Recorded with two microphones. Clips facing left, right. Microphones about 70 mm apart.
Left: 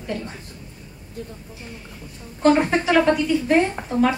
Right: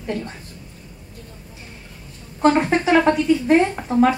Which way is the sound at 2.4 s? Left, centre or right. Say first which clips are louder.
Right 1 dB; right.